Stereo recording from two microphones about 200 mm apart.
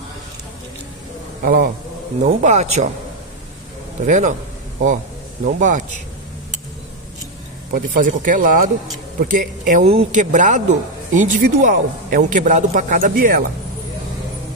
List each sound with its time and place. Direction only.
1.4 s a man's voice: 45° right (ahead or behind)
4.0 s speech: 40° right (ahead or behind)
5.4 s speech: 40° right (ahead or behind)
7.7 s speech: 40° right (ahead or behind)